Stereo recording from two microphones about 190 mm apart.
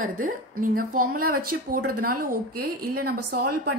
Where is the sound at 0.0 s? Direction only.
45° right (ahead or behind).